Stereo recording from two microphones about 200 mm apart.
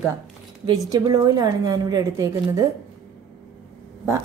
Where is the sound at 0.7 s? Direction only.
20° right (ahead or behind).